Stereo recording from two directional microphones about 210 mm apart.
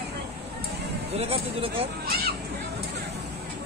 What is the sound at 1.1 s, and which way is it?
Speech, 30° right (ahead or behind).